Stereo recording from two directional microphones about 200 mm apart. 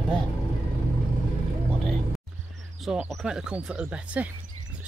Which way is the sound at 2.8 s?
Centre (ahead or behind).